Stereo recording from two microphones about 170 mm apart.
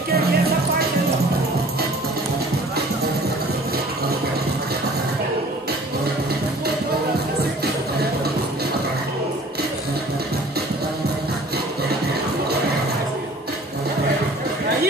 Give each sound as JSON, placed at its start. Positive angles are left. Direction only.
{"t": 0.1, "sound": "music", "side_deg": -65}